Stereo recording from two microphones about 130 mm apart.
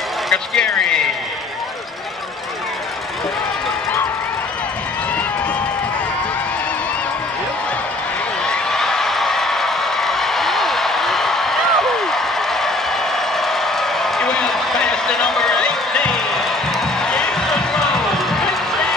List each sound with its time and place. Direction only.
0.3 s speech: 5° left (ahead or behind)
8.5 s a sound: 5° left (ahead or behind)
17.0 s music: 5° left (ahead or behind)